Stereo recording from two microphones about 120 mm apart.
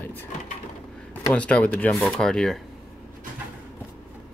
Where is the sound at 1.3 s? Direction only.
10° left (ahead or behind).